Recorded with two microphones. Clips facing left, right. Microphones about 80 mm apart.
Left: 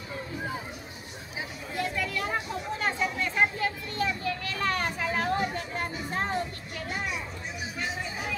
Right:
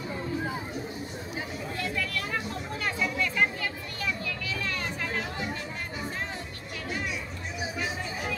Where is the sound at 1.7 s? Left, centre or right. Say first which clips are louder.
Left 3 dB; centre.